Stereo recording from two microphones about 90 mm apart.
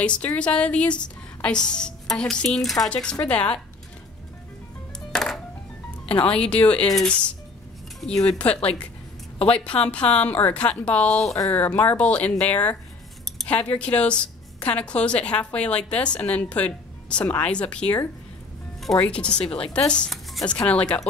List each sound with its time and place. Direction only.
0.0 s a woman's voice: 15° left (ahead or behind)
5.1 s music: 5° left (ahead or behind)
6.0 s a woman's voice: 15° left (ahead or behind)
9.8 s a woman's voice: 15° left (ahead or behind)
19.0 s a woman's voice: 10° left (ahead or behind)